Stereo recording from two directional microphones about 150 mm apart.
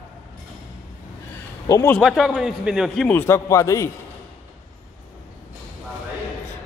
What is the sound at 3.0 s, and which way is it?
Speech, 15° left (ahead or behind).